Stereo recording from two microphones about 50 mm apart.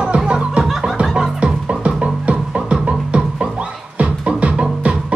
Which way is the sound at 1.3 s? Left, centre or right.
Centre.